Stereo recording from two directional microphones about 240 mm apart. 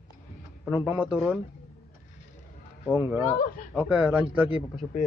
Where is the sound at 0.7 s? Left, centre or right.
Centre.